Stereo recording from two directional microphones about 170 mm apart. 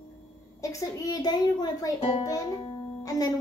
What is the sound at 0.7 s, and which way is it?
A child's voice, 20° left (ahead or behind).